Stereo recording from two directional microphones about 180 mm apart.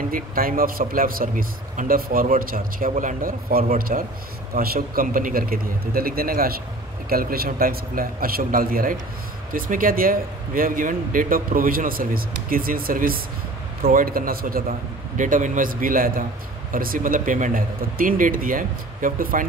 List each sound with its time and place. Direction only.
0.1 s speech: 50° right (ahead or behind)